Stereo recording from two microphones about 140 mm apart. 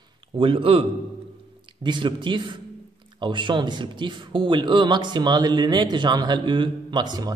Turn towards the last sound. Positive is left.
turn(degrees=-30)  # may be behind; listen again after turning